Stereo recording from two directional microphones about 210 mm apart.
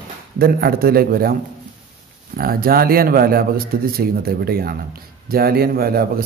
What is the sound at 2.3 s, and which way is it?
A man's voice, 45° right (ahead or behind).